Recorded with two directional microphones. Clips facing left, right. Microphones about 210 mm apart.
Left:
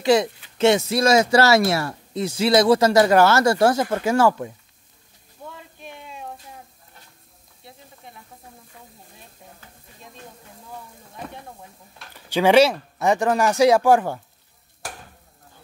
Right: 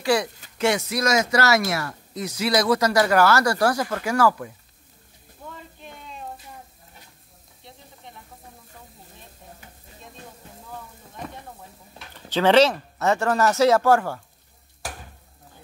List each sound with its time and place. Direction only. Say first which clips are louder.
0.0 s speech: left 4 dB; 20° left (ahead or behind)
5.8 s a sound: left 2 dB; 10° left (ahead or behind)
12.3 s speech: left 2 dB; 10° left (ahead or behind)